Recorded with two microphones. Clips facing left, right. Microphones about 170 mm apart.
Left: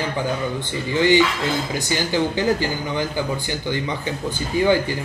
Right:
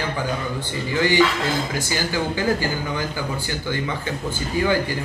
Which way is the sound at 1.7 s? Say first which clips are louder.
Left 2 dB; 20° left (ahead or behind).